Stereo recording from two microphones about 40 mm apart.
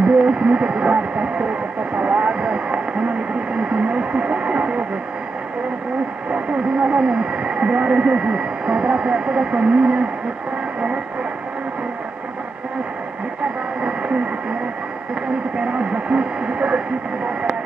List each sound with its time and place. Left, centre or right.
0.0 s speech: right
2.0 s vehicle: right
3.5 s radio: right
6.3 s speech: right
15.6 s speech: right